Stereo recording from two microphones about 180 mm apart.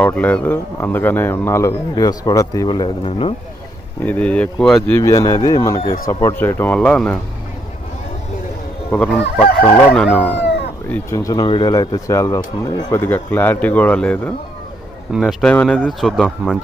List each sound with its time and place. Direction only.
0.0 s speech: 10° left (ahead or behind); by 3.3 s 30° left (ahead or behind)
4.0 s speech: 10° left (ahead or behind)
8.9 s speech: 5° left (ahead or behind)
10.9 s speech: 15° left (ahead or behind)